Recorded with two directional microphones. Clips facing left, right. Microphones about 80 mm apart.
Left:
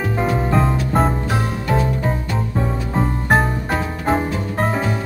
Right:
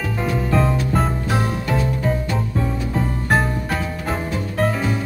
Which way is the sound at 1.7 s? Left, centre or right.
Left.